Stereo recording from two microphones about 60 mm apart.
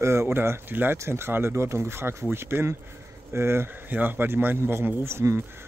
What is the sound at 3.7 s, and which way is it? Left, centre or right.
Speech, right.